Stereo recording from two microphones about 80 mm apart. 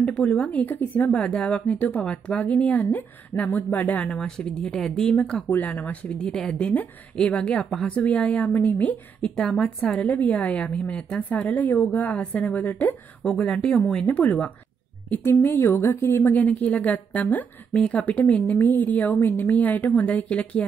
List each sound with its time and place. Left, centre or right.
0.0 s a woman's voice: centre
6.7 s a woman's voice: centre
14.0 s a woman's voice: centre